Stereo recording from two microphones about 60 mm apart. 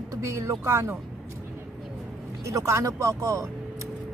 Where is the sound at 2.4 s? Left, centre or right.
Right.